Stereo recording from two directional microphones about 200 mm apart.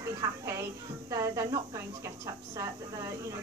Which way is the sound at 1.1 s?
15° right (ahead or behind).